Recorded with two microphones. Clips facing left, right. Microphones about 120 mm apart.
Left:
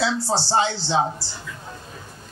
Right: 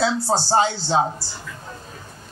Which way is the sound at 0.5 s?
40° right (ahead or behind).